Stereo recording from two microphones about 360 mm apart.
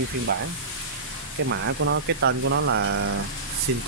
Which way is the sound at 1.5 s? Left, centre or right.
Right.